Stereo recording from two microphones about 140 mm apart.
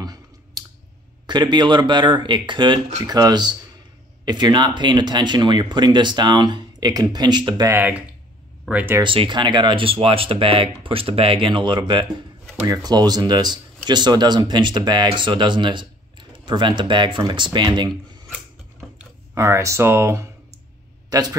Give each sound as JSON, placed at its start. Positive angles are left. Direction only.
{"t": 0.0, "sound": "clicking", "side_deg": -25}
{"t": 1.2, "sound": "speech", "side_deg": -30}
{"t": 8.6, "sound": "speech", "side_deg": -10}
{"t": 9.0, "sound": "speech", "side_deg": -40}
{"t": 19.3, "sound": "speech", "side_deg": -20}